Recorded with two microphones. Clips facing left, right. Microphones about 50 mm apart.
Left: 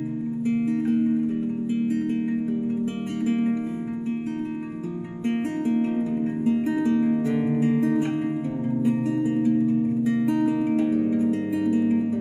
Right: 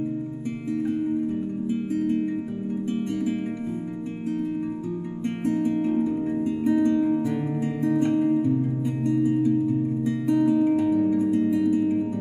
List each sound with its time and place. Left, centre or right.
5.7 s music: left; by 8.3 s centre
10.4 s music: left